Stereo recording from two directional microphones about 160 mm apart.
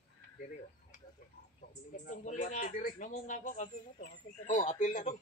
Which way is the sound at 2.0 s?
50° left (ahead or behind).